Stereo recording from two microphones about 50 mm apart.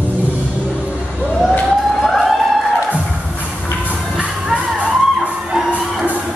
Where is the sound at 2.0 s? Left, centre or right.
Centre.